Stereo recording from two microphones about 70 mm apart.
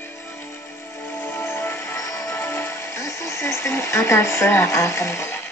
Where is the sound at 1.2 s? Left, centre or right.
Left.